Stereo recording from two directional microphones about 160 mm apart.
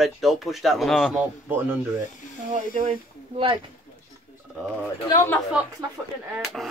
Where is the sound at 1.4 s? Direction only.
15° right (ahead or behind).